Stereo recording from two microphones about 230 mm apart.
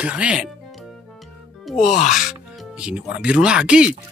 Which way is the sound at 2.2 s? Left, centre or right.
Centre.